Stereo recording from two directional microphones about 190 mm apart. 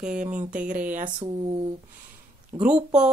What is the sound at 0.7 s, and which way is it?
Speech, 10° right (ahead or behind).